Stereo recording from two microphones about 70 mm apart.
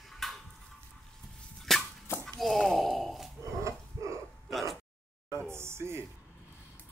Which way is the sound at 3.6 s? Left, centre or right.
Right.